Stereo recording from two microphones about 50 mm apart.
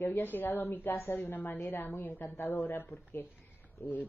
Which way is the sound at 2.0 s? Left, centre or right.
Left.